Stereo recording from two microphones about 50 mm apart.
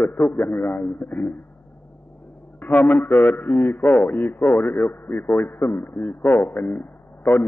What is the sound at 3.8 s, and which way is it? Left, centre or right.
A man's voice, left.